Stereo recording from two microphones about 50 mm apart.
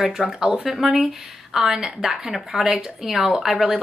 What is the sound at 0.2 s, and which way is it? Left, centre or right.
Speech, centre.